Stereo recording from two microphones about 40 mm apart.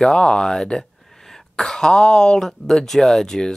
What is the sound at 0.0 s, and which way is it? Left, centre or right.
Speech, centre.